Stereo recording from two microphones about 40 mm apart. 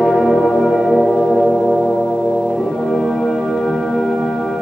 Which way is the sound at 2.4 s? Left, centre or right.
Centre.